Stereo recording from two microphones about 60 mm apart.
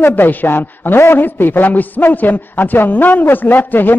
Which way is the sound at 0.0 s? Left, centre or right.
Left.